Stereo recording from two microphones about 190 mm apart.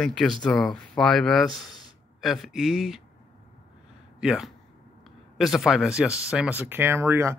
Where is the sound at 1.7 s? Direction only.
20° left (ahead or behind).